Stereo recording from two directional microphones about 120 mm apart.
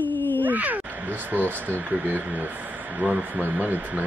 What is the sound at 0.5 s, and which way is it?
Crow, 15° right (ahead or behind).